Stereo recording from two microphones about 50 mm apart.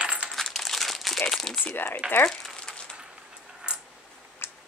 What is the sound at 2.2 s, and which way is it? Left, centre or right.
Crumpling, centre.